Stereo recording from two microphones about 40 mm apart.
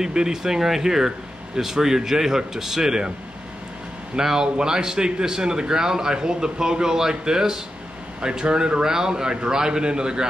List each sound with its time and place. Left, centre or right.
0.0 s speech: centre
4.2 s a man's voice: centre